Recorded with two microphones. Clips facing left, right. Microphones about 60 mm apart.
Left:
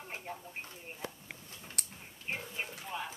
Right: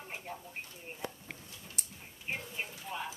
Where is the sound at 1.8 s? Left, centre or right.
Left.